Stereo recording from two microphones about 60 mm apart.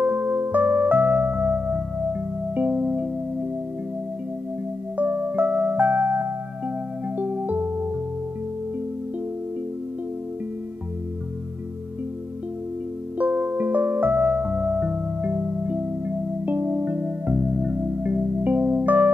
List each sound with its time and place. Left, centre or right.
0.0 s music: right
4.9 s music: right
13.2 s music: right